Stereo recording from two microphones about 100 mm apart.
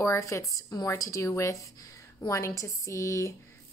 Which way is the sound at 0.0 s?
30° left (ahead or behind).